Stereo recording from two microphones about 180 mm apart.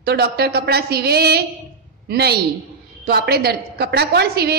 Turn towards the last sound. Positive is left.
turn(degrees=-60)  # may be behind; listen again after turning